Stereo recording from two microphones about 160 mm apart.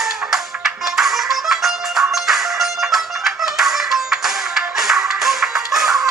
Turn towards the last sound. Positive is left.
turn(degrees=0)  # may be behind; listen again after turning